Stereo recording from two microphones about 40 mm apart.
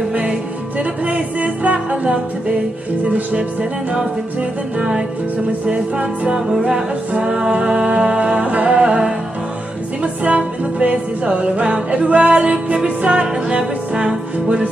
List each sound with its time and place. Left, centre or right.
0.7 s music: right
5.7 s music: right
6.3 s music: centre
8.5 s music: right
8.7 s music: right
10.2 s music: right